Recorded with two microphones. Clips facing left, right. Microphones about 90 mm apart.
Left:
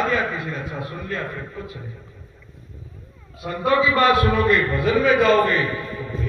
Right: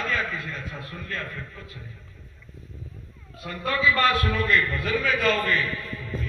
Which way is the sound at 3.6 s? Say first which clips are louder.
Left 5 dB; 20° left (ahead or behind).